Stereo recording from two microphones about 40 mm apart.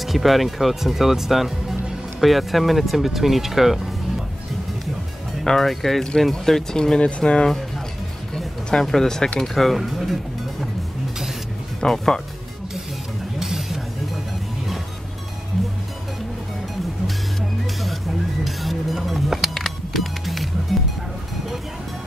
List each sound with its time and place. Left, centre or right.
0.0 s speech: centre
5.4 s speech: centre
6.8 s speech: left
8.8 s speech: centre
11.8 s speech: centre
13.4 s vehicle: centre
18.4 s music: centre